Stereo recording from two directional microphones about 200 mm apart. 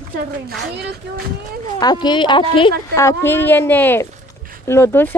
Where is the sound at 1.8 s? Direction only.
20° left (ahead or behind).